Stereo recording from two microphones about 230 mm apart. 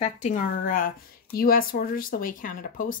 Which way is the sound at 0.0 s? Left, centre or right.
Left.